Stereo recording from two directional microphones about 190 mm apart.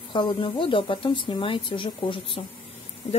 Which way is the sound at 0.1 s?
25° left (ahead or behind).